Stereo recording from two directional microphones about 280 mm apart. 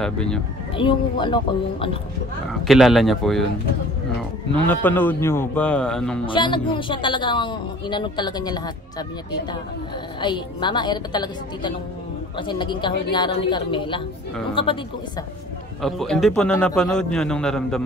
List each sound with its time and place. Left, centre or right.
0.0 s a man's voice: centre
0.7 s speech: centre
2.6 s a man's voice: centre
4.6 s a man's voice: centre
6.2 s speech: centre
10.2 s speech: centre
15.8 s a man's voice: centre